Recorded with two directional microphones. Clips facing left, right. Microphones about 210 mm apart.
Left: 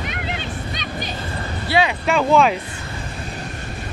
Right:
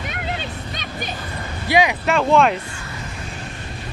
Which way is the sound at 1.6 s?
15° right (ahead or behind).